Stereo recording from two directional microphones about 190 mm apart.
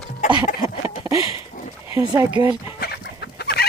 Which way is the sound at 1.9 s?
15° right (ahead or behind).